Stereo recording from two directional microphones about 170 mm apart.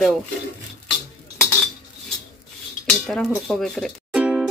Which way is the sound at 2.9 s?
Centre (ahead or behind).